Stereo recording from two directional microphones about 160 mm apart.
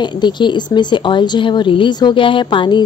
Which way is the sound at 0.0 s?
30° left (ahead or behind).